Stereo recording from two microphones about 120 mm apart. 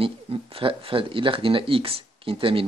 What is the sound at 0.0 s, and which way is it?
Speech, 50° right (ahead or behind).